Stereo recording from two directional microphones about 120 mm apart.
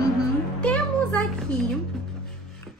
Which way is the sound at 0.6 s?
10° left (ahead or behind).